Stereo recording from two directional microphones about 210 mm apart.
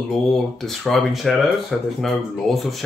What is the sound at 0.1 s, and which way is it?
Speech, centre (ahead or behind).